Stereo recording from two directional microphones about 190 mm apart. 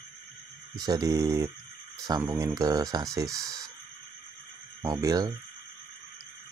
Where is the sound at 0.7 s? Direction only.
20° right (ahead or behind).